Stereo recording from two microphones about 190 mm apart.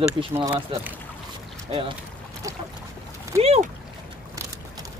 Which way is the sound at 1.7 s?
30° right (ahead or behind).